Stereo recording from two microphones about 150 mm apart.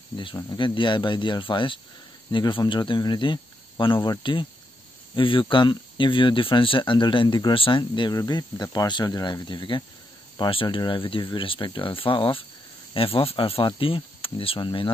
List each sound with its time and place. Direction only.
0.4 s speech: 25° left (ahead or behind)